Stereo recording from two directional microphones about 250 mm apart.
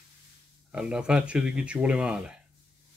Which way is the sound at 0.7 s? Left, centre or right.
Centre.